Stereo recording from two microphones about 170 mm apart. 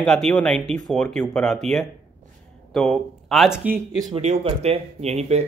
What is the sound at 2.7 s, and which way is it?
A man's voice, centre (ahead or behind).